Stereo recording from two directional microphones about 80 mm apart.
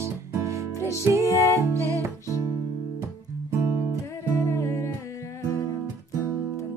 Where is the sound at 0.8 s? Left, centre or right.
Left.